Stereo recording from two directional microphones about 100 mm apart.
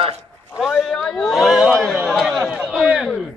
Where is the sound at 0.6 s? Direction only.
Centre (ahead or behind).